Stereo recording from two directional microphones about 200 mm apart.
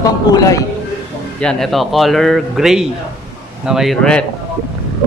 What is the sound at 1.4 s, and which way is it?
Speech, centre (ahead or behind).